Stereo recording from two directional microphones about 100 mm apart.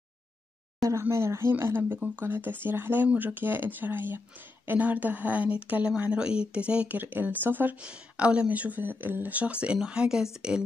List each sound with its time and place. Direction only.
1.0 s speech: 25° right (ahead or behind); by 10.6 s 5° right (ahead or behind)